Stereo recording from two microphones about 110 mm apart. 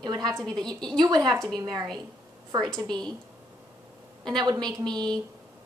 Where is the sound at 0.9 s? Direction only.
40° right (ahead or behind).